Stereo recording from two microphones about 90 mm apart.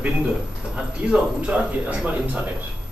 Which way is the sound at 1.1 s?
10° right (ahead or behind).